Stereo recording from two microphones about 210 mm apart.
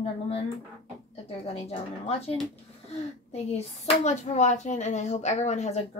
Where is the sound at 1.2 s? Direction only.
30° left (ahead or behind).